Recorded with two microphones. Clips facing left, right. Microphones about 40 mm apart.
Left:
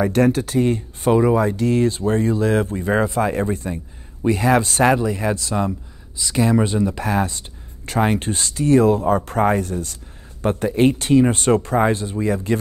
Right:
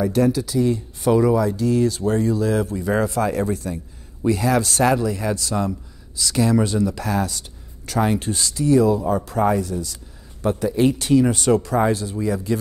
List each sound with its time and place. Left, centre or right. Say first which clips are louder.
0.0 s speech: left 2 dB; left